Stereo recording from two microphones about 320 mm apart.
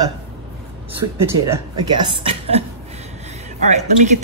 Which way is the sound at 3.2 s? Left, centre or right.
Right.